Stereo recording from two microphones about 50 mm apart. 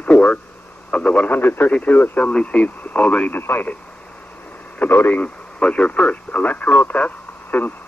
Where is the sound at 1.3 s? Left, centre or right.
Left.